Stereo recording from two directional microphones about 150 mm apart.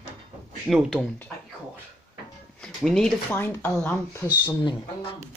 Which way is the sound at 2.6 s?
5° left (ahead or behind).